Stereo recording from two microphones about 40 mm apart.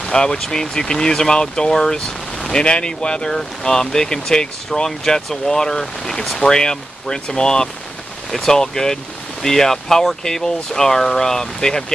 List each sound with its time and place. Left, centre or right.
0.0 s speech: centre